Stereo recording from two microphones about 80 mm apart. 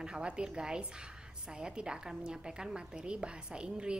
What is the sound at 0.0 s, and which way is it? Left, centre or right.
A woman's voice, centre.